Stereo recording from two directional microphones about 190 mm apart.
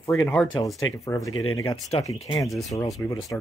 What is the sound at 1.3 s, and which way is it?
Speech, 90° left.